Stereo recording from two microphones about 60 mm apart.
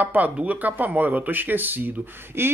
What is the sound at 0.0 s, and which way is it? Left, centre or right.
Speech, right.